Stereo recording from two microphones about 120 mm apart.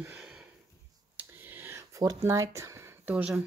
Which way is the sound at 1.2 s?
15° right (ahead or behind).